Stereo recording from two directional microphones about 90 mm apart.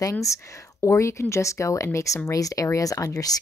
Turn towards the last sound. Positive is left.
turn(degrees=40)  # may be behind; listen again after turning